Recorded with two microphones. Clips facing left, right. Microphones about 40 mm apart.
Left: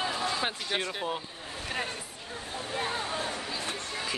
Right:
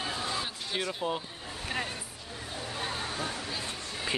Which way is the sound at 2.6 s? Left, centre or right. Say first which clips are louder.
Left 3 dB; left.